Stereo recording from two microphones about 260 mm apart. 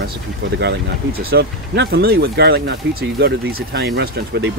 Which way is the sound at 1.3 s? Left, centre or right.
Right.